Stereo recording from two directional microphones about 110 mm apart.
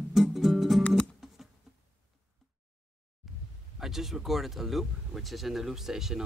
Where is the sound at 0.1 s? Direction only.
Centre (ahead or behind).